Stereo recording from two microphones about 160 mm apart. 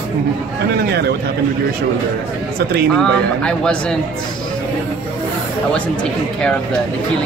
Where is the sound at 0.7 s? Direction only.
90° right.